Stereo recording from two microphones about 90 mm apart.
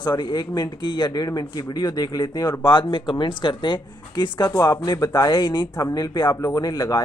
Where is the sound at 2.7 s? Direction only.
65° left (ahead or behind).